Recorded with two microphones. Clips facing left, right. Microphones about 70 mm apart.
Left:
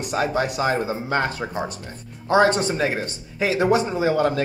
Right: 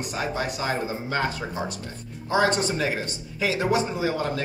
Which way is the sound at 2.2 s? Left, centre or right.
Left.